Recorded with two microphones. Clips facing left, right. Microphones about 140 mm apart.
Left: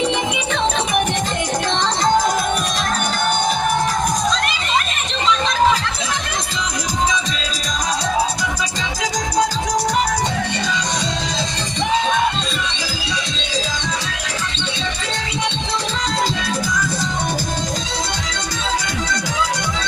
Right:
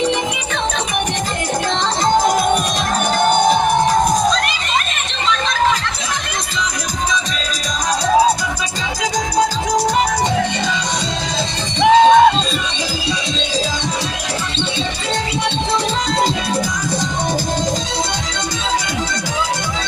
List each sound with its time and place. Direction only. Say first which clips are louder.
11.8 s music: right 10 dB; 75° right (ahead or behind)